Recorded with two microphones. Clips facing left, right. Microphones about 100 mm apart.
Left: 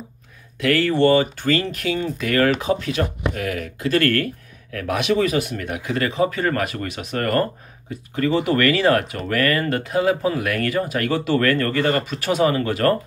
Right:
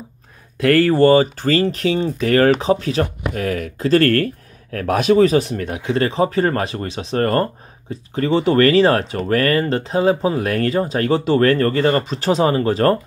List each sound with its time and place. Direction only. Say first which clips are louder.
0.6 s speech: right 5 dB; 40° right (ahead or behind)